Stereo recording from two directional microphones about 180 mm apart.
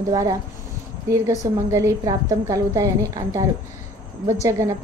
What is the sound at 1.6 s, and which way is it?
A woman's voice, 15° right (ahead or behind).